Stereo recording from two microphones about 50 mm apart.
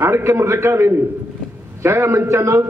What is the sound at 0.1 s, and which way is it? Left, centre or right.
A man's voice, right.